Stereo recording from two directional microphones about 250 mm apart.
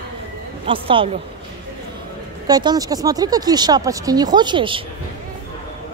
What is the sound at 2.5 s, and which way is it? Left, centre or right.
Speech, centre.